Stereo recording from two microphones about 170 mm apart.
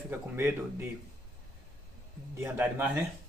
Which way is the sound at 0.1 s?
15° right (ahead or behind).